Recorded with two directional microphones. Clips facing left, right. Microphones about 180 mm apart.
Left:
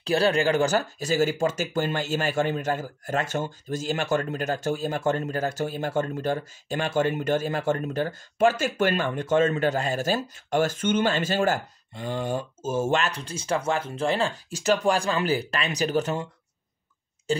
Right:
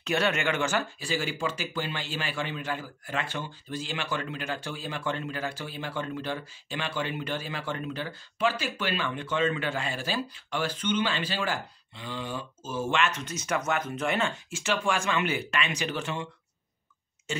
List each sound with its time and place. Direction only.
0.0 s speech: 35° left (ahead or behind)
17.3 s speech: 35° left (ahead or behind)